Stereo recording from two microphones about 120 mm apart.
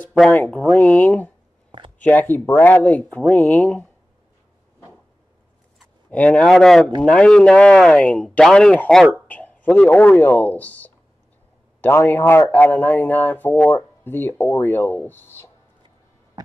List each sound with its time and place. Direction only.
0.3 s speech: 10° left (ahead or behind)
6.0 s a man's voice: 10° left (ahead or behind)